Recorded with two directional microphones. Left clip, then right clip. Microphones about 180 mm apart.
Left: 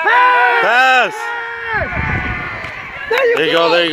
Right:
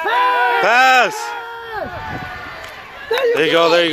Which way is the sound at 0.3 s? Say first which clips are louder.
Left 3 dB; 15° right (ahead or behind).